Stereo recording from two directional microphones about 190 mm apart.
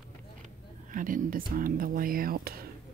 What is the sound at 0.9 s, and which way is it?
Speech, 45° right (ahead or behind).